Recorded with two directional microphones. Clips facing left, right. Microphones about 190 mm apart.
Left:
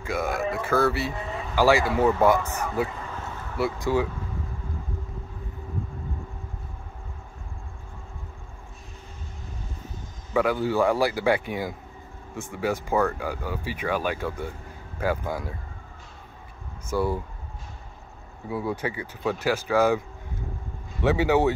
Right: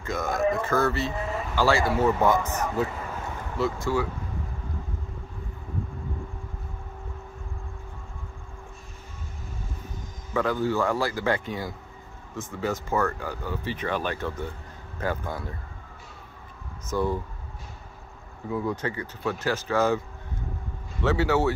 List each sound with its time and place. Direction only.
0.0 s speech: 10° left (ahead or behind)
10.3 s speech: 10° left (ahead or behind)
16.9 s speech: 10° left (ahead or behind)
18.5 s speech: 10° left (ahead or behind)
21.0 s speech: 15° left (ahead or behind)